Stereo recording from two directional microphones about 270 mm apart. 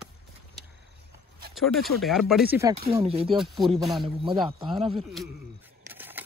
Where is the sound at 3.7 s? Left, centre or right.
Centre.